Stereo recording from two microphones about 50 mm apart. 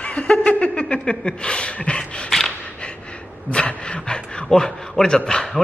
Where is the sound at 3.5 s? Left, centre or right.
Left.